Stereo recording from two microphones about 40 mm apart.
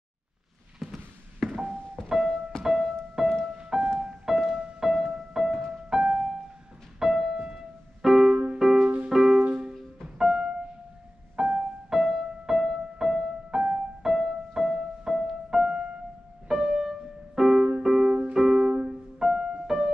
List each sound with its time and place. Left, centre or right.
0.7 s a sound: centre
2.0 s music: centre
7.3 s keyboard: centre
8.3 s music: right
9.1 s music: centre
9.4 s music: right; by 15.3 s centre
15.5 s music: centre